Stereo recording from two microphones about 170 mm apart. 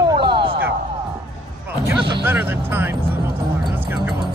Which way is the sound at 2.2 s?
10° right (ahead or behind).